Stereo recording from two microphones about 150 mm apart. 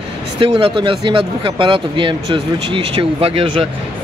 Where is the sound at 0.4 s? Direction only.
40° right (ahead or behind).